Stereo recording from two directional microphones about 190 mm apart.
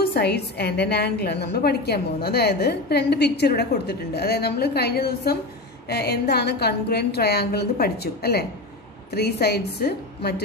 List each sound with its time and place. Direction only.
0.1 s a woman's voice: 60° left (ahead or behind)